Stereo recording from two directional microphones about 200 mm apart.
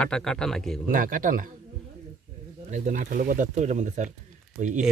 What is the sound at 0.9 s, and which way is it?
Speech, 45° right (ahead or behind).